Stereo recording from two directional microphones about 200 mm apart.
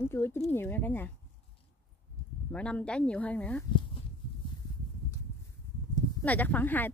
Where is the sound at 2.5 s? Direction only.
5° left (ahead or behind).